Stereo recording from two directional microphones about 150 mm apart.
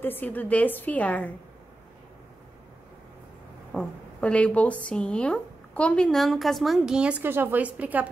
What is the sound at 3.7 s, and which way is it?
A woman's voice, 5° left (ahead or behind).